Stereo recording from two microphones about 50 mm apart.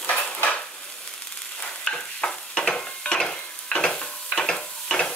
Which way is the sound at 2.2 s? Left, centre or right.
Centre.